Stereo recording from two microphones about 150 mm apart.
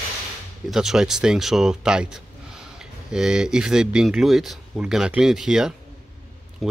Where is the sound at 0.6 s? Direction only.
5° right (ahead or behind).